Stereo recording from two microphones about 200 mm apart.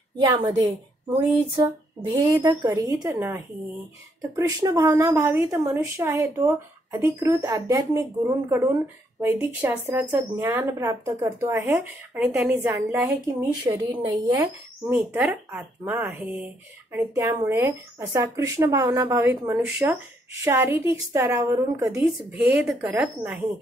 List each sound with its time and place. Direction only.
0.2 s a woman's voice: 20° right (ahead or behind)
14.4 s a woman's voice: 5° right (ahead or behind)